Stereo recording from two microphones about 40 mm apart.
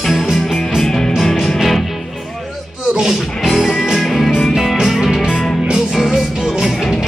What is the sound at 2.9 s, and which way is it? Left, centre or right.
Music, centre.